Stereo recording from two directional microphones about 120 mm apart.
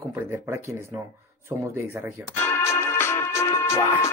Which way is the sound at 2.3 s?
20° left (ahead or behind).